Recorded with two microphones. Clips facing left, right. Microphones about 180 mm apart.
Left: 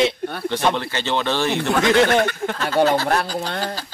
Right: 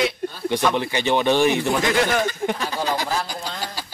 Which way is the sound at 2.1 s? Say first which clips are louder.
Left 3 dB; 65° left (ahead or behind).